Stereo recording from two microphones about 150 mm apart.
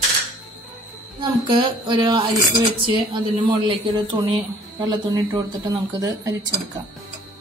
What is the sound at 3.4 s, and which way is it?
Music, 30° right (ahead or behind).